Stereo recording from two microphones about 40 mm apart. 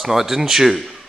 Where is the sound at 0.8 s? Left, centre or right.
Centre.